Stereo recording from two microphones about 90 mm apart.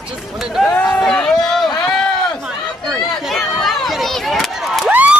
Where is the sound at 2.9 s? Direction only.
5° left (ahead or behind).